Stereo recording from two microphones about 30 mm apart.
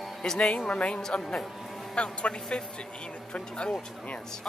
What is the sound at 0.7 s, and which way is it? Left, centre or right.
Speech, left.